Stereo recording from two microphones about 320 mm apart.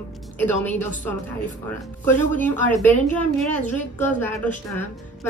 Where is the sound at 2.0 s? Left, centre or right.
Centre.